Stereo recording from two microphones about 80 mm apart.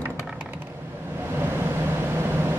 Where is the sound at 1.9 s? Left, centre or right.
Right.